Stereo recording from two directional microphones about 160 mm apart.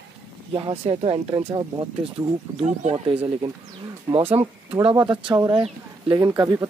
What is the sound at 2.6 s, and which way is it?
Speech, 45° right (ahead or behind).